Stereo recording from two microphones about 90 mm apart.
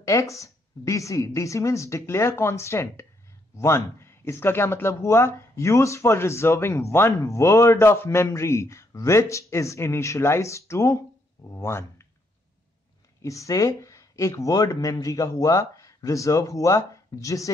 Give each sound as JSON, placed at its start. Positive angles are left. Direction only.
{"t": 0.0, "sound": "speech", "side_deg": 35}
{"t": 13.2, "sound": "speech", "side_deg": 35}